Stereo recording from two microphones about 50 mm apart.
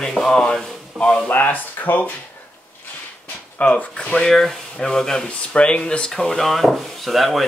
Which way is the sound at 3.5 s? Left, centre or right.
Left.